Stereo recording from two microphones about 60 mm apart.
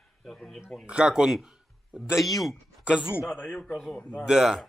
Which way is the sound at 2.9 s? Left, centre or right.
Centre.